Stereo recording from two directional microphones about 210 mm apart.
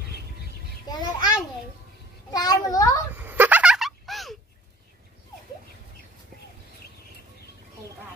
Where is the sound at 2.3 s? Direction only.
20° left (ahead or behind).